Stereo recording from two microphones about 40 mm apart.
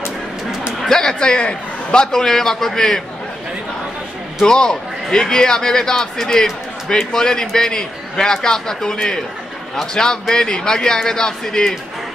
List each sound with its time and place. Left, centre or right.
0.8 s a sound: centre
1.2 s a man's voice: left
2.0 s a man's voice: centre
4.5 s a man's voice: centre